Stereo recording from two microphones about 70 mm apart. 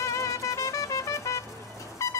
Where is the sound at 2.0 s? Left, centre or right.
Left.